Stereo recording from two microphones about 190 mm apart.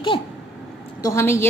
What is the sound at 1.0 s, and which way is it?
Speech, 15° left (ahead or behind).